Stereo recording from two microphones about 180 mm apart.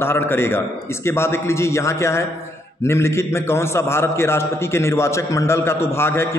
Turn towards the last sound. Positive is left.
turn(degrees=15)  # may be behind; listen again after turning